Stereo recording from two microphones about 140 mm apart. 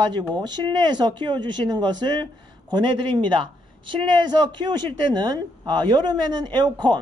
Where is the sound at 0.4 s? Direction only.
30° right (ahead or behind).